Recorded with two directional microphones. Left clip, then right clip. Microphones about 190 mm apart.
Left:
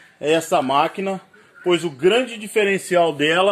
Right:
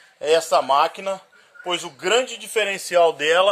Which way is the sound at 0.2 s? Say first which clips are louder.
Even; 10° right (ahead or behind).